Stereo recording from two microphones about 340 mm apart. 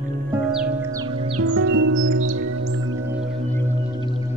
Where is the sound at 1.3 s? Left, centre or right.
Right.